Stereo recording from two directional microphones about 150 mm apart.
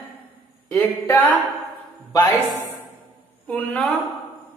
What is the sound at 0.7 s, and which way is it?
Speech, 15° left (ahead or behind).